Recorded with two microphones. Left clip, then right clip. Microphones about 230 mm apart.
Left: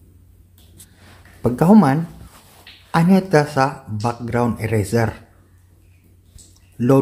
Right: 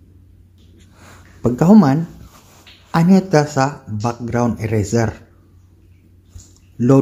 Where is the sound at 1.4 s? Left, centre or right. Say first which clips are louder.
Right 1 dB; centre.